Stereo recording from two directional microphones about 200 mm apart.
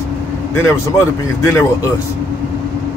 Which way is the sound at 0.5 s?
15° left (ahead or behind).